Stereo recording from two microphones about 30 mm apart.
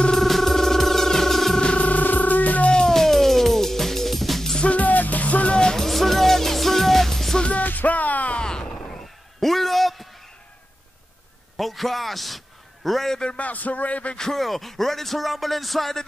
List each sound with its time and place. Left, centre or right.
0.1 s music: centre
1.8 s music: left
2.9 s music: centre
4.6 s music: left
5.8 s music: centre
7.6 s music: left
8.4 s a sound: left
9.0 s a sound: centre
11.5 s a sound: centre
13.4 s music: left
14.3 s music: centre